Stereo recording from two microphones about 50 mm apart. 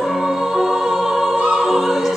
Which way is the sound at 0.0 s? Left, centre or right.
Centre.